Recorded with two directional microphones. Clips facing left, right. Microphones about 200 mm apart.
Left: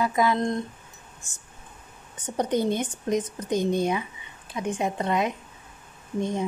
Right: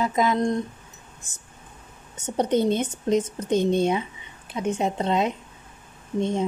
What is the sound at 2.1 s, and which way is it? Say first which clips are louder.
Speech: right 3 dB; 25° right (ahead or behind).